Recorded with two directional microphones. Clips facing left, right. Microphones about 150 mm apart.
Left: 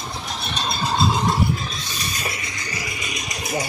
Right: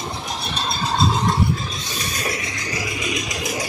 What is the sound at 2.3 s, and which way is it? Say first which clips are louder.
Music: right 4 dB; 90° right.